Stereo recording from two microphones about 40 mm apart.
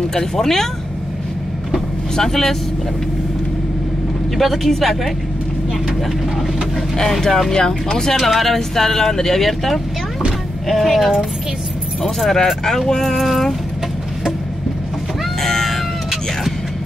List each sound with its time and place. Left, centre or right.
0.1 s speech: centre
2.1 s speech: centre
4.4 s speech: centre
7.0 s speech: centre
7.5 s speech: centre
8.2 s speech: centre
15.4 s cat: centre